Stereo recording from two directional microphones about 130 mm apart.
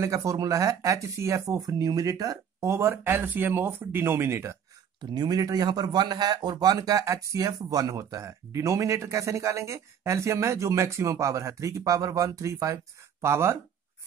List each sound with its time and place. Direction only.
0.0 s a man's voice: 25° right (ahead or behind)
5.1 s a man's voice: 30° right (ahead or behind)